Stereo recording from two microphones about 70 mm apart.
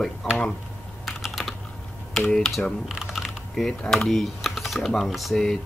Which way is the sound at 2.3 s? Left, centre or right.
Centre.